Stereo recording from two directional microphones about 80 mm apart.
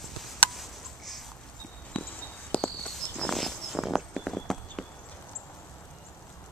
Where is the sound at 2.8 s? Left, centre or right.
Centre.